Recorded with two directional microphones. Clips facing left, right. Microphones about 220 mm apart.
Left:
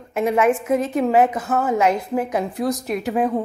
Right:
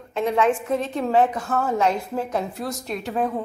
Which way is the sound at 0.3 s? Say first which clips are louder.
Left 3 dB; 20° left (ahead or behind).